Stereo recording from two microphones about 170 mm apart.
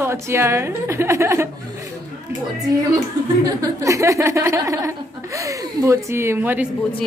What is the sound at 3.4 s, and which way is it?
Speech, 20° right (ahead or behind).